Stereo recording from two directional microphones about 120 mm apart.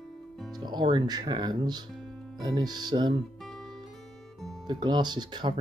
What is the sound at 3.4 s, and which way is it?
Music, 5° left (ahead or behind).